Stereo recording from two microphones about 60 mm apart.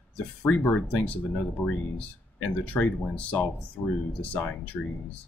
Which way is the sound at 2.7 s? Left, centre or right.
Left.